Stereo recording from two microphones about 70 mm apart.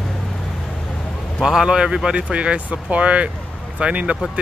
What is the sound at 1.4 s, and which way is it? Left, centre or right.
Speech, centre.